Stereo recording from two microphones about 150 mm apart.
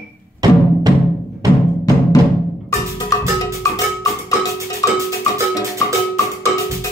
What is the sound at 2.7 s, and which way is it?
Music, 20° left (ahead or behind).